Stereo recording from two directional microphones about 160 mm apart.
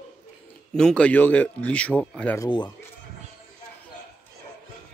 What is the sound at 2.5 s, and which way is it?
Speech, 30° left (ahead or behind).